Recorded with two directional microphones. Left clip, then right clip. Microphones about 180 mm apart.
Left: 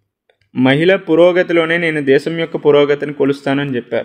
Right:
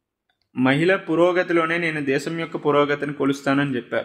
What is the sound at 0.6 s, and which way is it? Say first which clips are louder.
Speech: left 7 dB; 35° left (ahead or behind).